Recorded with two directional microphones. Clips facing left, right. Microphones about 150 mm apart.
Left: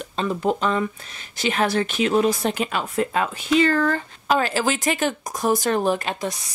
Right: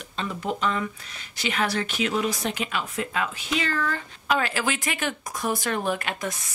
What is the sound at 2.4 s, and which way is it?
Speech, 45° left (ahead or behind).